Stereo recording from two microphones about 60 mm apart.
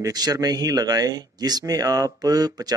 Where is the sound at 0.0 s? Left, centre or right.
Right.